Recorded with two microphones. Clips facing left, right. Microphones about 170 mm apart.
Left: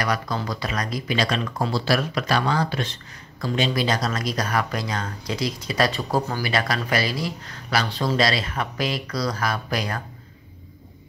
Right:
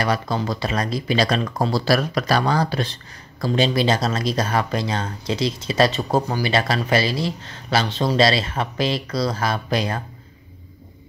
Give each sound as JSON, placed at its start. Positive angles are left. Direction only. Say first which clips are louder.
{"t": 0.0, "sound": "speech", "louder": "right 3 dB", "side_deg": -25}